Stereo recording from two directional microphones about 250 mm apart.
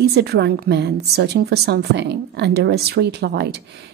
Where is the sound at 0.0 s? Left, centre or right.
Right.